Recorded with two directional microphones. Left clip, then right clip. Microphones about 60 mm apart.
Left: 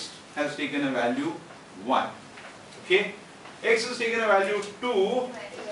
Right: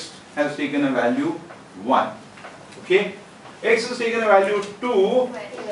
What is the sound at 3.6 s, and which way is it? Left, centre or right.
Speech, centre.